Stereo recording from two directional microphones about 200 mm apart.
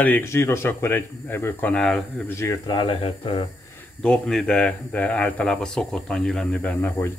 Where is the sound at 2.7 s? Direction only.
25° left (ahead or behind).